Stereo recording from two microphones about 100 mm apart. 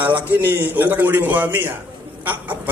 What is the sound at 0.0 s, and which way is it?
A man's voice, 20° right (ahead or behind).